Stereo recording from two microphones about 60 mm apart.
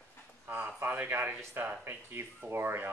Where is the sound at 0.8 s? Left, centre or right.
Right.